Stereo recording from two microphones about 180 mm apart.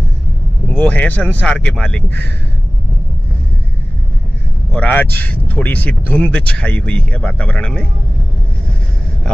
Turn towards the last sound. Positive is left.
turn(degrees=5)  # may be behind; listen again after turning